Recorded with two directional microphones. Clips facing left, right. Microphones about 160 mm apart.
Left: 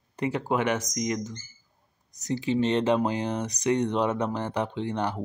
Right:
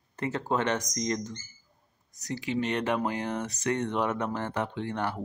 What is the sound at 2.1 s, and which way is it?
Speech, 20° left (ahead or behind).